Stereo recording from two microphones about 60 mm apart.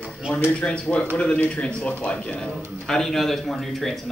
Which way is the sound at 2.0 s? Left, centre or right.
Centre.